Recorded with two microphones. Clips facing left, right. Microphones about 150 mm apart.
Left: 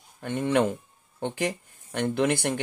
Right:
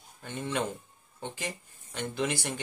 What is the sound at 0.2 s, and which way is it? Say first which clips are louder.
Speech: left 9 dB; 60° left (ahead or behind).